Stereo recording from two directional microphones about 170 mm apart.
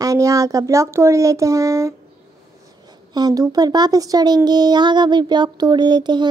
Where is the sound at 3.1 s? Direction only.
20° right (ahead or behind).